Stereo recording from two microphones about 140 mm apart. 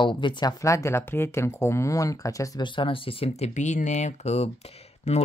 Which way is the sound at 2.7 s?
40° left (ahead or behind).